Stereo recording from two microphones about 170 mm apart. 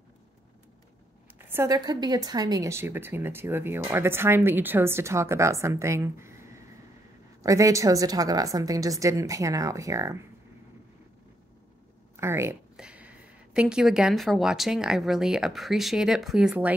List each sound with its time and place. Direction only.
1.4 s a woman's voice: 15° right (ahead or behind)
12.2 s speech: 15° right (ahead or behind)